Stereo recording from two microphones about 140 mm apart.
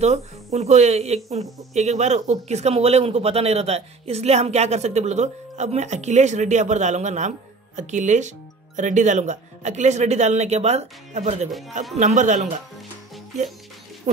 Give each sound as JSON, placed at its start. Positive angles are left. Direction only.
{"t": 0.0, "sound": "speech", "side_deg": -50}
{"t": 14.1, "sound": "speech", "side_deg": -65}